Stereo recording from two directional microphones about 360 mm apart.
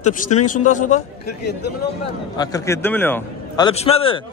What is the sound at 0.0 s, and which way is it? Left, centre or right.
A man's voice, centre.